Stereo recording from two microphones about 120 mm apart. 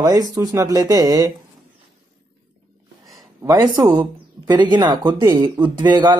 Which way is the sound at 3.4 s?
25° right (ahead or behind).